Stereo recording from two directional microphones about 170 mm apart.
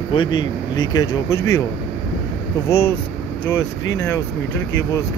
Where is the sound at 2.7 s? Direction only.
15° left (ahead or behind).